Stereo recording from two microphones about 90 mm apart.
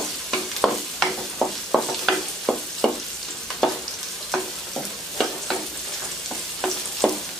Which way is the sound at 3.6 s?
5° left (ahead or behind).